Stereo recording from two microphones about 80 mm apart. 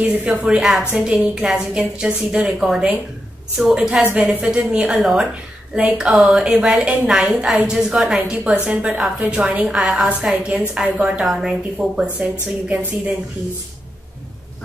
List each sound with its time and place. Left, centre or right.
0.0 s a woman's voice: right
4.0 s a woman's voice: right